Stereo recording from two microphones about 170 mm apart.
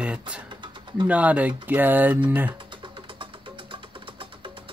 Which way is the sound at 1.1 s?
10° right (ahead or behind).